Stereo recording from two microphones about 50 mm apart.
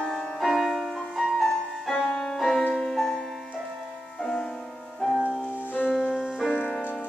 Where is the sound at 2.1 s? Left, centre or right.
Centre.